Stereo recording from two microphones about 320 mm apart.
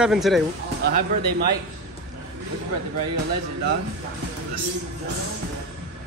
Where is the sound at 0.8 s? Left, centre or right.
Right.